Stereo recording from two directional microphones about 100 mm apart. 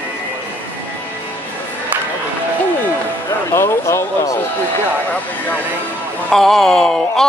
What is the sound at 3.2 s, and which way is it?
Speech, 25° left (ahead or behind).